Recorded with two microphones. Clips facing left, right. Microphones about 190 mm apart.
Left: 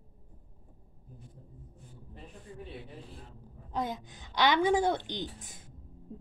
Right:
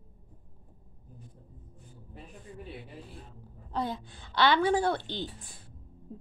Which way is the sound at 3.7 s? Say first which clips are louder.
Right 1 dB; 15° left (ahead or behind).